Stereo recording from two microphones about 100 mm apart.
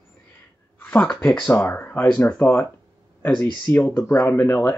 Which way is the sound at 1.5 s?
20° left (ahead or behind).